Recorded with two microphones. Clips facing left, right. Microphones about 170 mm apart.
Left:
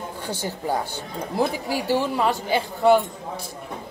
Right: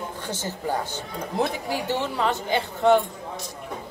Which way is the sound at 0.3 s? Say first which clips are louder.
Left 2 dB; 10° left (ahead or behind).